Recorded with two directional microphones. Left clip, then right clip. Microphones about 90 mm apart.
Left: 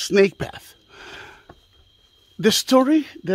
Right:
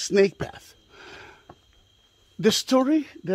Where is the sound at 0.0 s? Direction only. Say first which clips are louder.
Left 3 dB; 35° left (ahead or behind).